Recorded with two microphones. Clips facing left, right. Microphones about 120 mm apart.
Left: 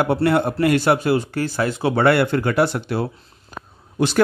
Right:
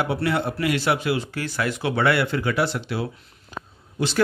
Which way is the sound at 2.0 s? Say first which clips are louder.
Left 5 dB; 50° left (ahead or behind).